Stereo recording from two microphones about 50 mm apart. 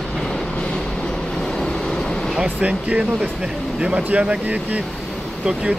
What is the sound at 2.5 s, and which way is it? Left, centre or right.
Speech, right.